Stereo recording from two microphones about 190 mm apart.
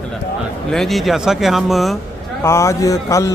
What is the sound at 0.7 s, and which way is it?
Speech, centre (ahead or behind).